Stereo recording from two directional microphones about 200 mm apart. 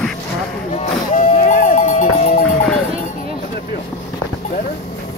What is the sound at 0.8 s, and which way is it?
Music, 40° left (ahead or behind).